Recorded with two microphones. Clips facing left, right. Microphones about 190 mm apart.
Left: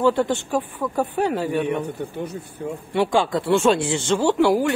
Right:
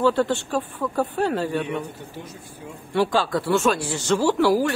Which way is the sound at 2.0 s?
60° left (ahead or behind).